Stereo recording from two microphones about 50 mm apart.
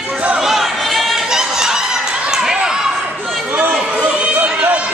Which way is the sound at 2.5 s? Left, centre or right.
Centre.